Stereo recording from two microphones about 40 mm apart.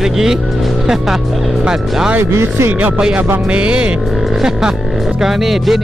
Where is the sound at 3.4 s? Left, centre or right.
Right.